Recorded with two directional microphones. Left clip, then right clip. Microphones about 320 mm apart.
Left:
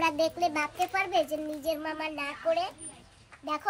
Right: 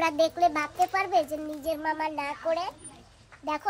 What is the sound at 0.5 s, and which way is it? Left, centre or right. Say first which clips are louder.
A child's voice: right 3 dB; right.